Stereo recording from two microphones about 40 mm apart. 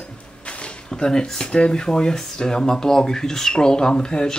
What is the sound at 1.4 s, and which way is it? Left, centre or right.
Speech, left.